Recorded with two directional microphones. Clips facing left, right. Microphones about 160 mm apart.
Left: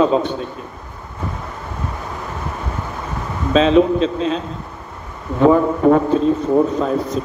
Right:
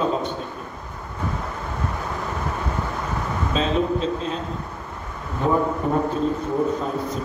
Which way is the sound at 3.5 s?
90° left.